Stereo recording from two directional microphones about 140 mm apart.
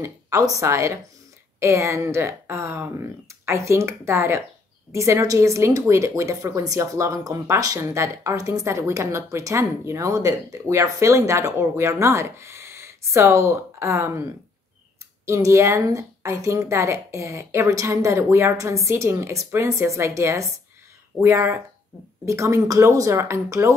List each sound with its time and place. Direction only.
0.0 s a woman's voice: 20° right (ahead or behind)
15.2 s a woman's voice: 20° right (ahead or behind)